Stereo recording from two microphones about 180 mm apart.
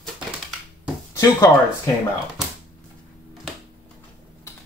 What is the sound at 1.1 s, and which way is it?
Speech, 15° left (ahead or behind).